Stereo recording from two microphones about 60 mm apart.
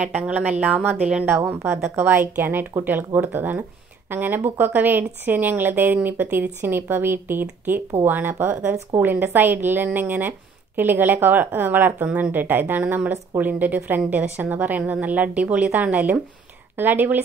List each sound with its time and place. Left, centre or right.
0.0 s a woman's voice: right
1.6 s a woman's voice: right
2.8 s a woman's voice: right